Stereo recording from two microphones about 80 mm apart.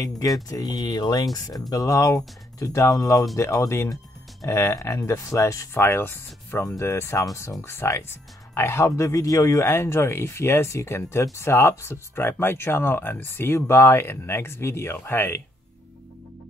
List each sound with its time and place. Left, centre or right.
0.5 s speech: left
5.9 s speech: left